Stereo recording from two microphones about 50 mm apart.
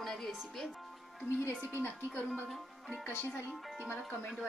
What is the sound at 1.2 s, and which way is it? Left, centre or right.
Speech, left.